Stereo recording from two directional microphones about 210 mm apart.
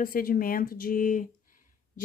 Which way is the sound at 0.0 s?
45° left (ahead or behind).